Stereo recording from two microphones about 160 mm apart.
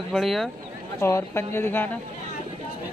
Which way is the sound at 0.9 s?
15° left (ahead or behind).